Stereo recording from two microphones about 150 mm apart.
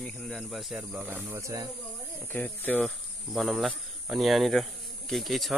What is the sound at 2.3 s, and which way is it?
Speech, 10° left (ahead or behind).